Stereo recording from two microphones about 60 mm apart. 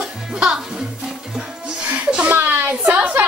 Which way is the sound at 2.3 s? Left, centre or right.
Right.